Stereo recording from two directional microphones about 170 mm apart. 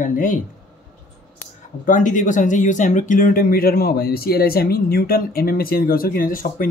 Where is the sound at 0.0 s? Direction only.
50° left (ahead or behind).